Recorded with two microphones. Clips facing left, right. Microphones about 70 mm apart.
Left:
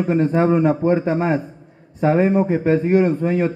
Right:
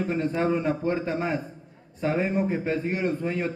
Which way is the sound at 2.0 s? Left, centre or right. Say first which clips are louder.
Left 9 dB; left.